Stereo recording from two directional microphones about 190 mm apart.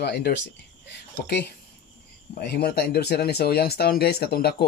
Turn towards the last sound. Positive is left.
turn(degrees=55)  # may be behind; listen again after turning